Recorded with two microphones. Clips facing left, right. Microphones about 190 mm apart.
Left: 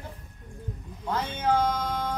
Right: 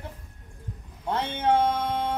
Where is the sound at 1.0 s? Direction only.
25° right (ahead or behind).